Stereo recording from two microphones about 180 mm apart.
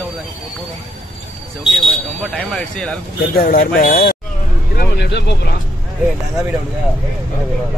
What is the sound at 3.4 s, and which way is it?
Speech, 55° left (ahead or behind).